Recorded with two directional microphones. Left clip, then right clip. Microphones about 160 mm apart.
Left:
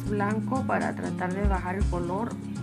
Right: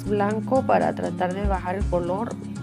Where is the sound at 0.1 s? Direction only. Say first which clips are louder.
Right 7 dB; 45° right (ahead or behind).